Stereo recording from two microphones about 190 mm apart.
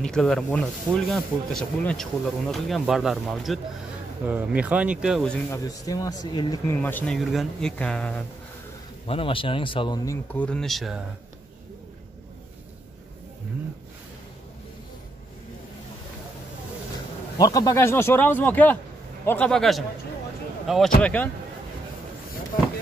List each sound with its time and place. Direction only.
0.0 s speech: 5° left (ahead or behind)
5.5 s speech: 20° left (ahead or behind)
6.8 s speech: 10° left (ahead or behind)
9.0 s speech: 30° left (ahead or behind)
10.3 s speech: 5° left (ahead or behind)
17.4 s speech: 20° left (ahead or behind)